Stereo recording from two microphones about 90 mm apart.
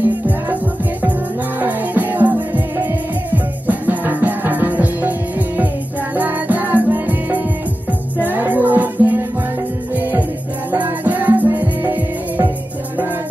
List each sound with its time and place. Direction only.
1.6 s music: 20° right (ahead or behind)
6.1 s music: 20° right (ahead or behind)
10.7 s music: 20° right (ahead or behind)